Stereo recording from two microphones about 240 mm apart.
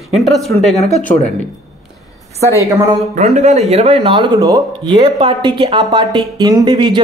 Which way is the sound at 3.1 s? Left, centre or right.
Right.